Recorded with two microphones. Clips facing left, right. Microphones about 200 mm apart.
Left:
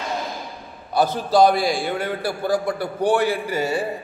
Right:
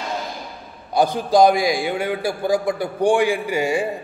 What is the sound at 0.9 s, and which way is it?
A man's voice, 15° right (ahead or behind).